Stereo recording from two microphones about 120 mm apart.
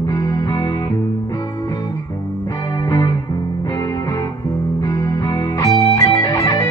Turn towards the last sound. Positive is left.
turn(degrees=30)  # may be behind; listen again after turning